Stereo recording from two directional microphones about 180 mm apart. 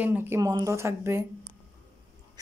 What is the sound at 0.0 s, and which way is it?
Speech, 10° right (ahead or behind).